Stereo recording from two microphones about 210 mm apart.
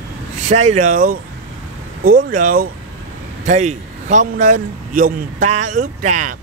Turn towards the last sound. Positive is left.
turn(degrees=-35)  # may be behind; listen again after turning